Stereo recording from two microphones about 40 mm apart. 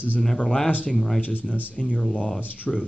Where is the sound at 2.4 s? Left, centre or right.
Left.